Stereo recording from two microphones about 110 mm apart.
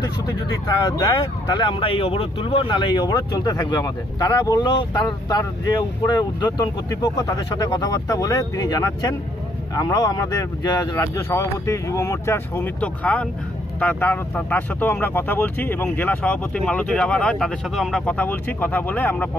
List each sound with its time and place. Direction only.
0.0 s speech: 40° left (ahead or behind)
1.7 s speech: 55° left (ahead or behind); by 6.1 s 35° left (ahead or behind)
7.2 s speech: 35° left (ahead or behind); by 19.2 s 15° left (ahead or behind)